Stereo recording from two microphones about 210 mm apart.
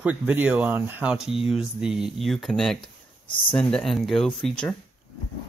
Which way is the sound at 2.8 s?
25° left (ahead or behind).